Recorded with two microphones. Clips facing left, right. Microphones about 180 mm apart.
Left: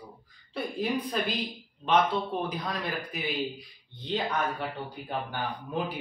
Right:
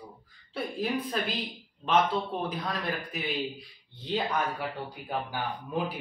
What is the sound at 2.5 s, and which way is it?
Speech, centre (ahead or behind).